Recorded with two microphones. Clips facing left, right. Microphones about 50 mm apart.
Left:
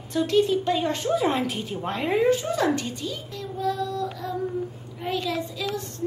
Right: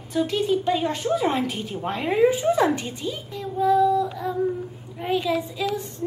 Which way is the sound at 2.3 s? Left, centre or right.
Centre.